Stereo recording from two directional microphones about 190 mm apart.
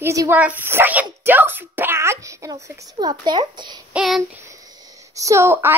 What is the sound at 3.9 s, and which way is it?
Child singing, centre (ahead or behind).